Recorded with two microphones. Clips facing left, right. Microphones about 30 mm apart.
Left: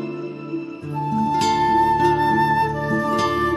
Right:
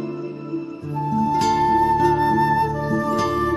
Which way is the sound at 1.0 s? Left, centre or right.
Centre.